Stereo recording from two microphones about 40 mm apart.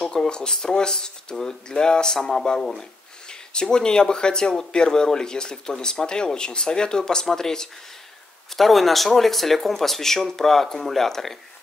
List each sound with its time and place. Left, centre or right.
0.0 s speech: centre
8.5 s speech: centre